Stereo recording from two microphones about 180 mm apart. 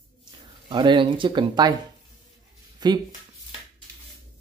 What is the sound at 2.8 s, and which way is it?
Speech, 25° right (ahead or behind).